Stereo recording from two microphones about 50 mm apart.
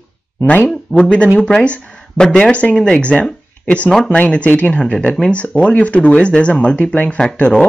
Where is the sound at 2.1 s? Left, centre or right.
Centre.